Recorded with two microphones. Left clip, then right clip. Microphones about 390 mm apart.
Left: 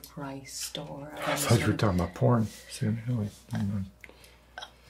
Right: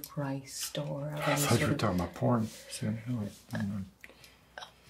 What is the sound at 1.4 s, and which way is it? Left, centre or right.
Speech, left.